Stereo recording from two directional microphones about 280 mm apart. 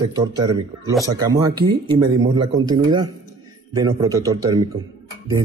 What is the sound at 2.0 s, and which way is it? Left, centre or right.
Speech, centre.